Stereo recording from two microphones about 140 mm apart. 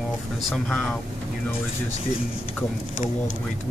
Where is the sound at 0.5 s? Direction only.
5° left (ahead or behind).